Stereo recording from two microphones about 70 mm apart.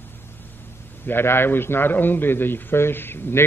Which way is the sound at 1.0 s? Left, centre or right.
Left.